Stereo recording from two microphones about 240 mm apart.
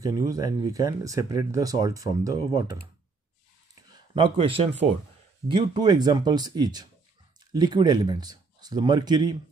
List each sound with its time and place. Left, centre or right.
0.0 s speech: centre
3.9 s speech: centre